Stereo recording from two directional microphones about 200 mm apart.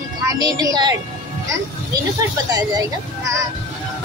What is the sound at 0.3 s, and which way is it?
Speech, 20° right (ahead or behind).